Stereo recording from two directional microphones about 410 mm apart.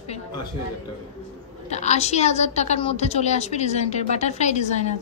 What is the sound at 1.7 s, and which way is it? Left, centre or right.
A woman's voice, centre.